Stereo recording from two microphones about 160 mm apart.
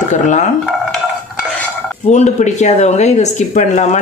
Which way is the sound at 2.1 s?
45° left (ahead or behind).